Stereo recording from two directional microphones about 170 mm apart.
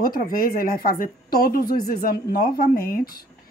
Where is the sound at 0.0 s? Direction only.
60° left (ahead or behind).